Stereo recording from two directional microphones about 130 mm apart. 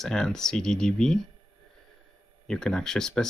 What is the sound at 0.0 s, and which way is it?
Speech, 5° left (ahead or behind).